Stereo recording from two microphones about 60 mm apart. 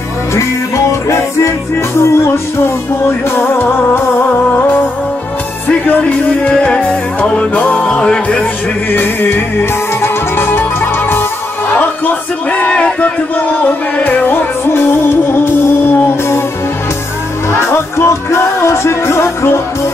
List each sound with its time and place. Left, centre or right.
0.3 s music: left
5.9 s music: left
8.9 s music: left
11.7 s speech: left
17.5 s music: left